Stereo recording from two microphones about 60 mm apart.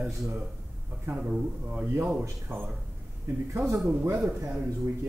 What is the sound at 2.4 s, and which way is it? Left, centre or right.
Speech, right.